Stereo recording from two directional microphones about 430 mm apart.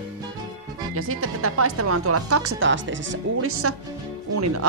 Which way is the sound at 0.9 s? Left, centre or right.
Right.